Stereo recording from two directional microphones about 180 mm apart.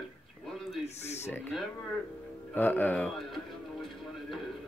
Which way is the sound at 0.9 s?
35° left (ahead or behind).